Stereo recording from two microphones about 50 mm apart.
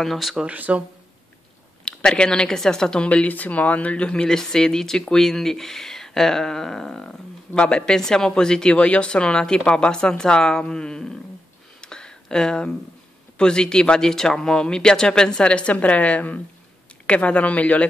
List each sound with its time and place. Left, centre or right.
0.0 s speech: centre
0.5 s speech: right
1.9 s speech: centre
3.1 s speech: left; by 11.1 s centre
11.8 s a sound: centre
13.4 s speech: centre